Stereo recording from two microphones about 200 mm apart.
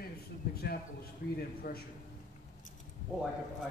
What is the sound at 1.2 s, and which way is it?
Speech, 50° left (ahead or behind).